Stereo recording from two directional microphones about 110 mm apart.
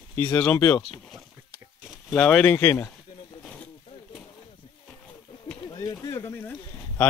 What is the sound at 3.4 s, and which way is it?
Wild animals, 10° left (ahead or behind).